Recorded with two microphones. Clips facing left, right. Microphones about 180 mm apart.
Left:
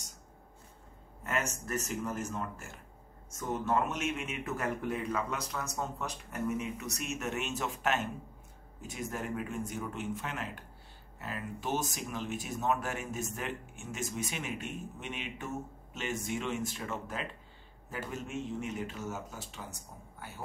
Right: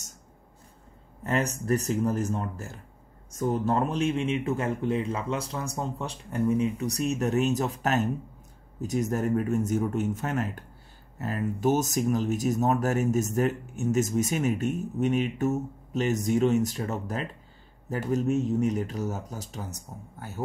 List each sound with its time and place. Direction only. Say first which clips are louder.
1.2 s speech: right 7 dB; 35° right (ahead or behind)